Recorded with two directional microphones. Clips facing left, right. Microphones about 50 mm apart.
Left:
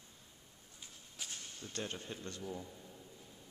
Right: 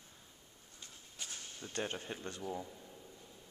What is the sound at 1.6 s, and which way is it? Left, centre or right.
Speech, right.